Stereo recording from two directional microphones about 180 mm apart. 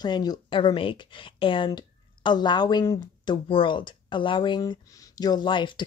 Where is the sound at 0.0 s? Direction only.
25° left (ahead or behind).